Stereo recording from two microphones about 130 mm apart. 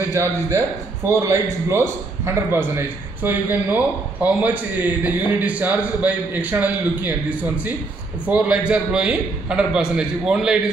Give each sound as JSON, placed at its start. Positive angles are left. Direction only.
{"t": 0.1, "sound": "a man's voice", "side_deg": -20}